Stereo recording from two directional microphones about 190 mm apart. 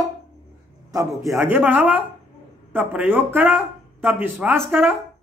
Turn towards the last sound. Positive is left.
turn(degrees=-10)  # may be behind; listen again after turning